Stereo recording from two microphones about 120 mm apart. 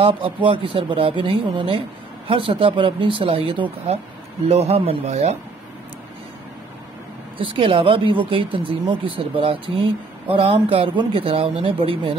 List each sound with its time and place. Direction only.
0.0 s speech: 45° right (ahead or behind)
4.5 s speech: 60° right (ahead or behind)
7.3 s speech: 45° right (ahead or behind)